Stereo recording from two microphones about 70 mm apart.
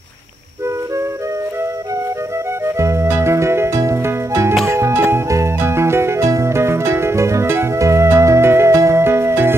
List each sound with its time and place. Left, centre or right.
2.6 s music: right